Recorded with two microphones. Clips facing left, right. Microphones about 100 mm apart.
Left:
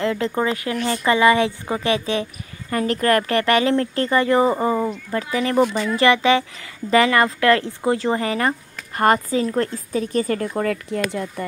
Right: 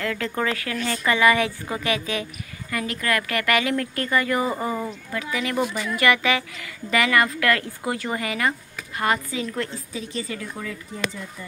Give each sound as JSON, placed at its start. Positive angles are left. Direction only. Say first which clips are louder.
{"t": 0.0, "sound": "a woman's voice", "louder": "left 5 dB", "side_deg": 25}